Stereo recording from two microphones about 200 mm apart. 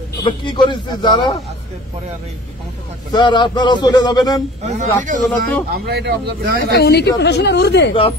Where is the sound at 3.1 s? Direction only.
20° left (ahead or behind).